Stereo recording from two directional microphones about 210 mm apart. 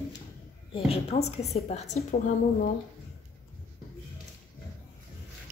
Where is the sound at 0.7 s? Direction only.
30° left (ahead or behind).